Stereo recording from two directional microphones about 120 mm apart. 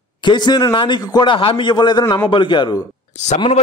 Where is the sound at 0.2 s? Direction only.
40° left (ahead or behind).